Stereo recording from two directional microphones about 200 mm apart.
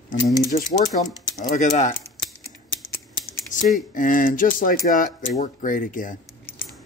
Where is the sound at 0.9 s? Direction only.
45° left (ahead or behind).